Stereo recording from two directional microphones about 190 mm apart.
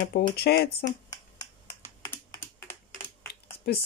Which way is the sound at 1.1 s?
15° left (ahead or behind).